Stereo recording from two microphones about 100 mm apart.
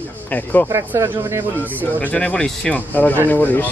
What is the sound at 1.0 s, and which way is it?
Speech, 30° right (ahead or behind).